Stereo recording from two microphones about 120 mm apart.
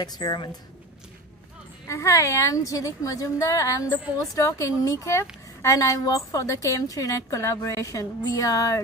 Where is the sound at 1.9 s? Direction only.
25° left (ahead or behind).